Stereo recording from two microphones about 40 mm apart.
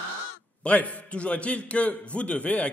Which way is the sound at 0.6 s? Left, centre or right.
Left.